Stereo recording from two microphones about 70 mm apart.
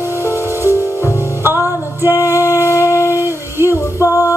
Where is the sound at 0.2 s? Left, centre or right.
Left.